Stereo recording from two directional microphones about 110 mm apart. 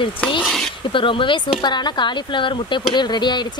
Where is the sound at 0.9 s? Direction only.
50° left (ahead or behind).